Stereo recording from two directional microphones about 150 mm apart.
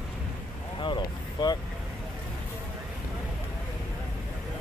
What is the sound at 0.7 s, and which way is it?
Vehicle, 30° left (ahead or behind).